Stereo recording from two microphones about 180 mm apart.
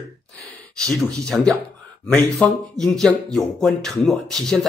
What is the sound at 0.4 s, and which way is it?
Speech, 5° left (ahead or behind).